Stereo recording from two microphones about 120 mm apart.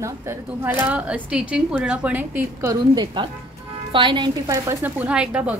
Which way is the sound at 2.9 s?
40° right (ahead or behind).